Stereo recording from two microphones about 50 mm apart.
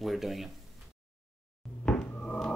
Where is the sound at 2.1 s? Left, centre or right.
Left.